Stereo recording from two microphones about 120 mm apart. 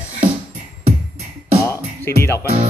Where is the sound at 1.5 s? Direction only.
25° left (ahead or behind).